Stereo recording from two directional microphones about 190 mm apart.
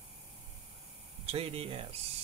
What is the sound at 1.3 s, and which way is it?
Speech, 30° right (ahead or behind).